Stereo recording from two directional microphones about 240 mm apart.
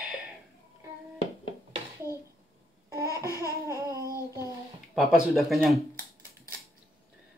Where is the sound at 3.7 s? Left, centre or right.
Centre.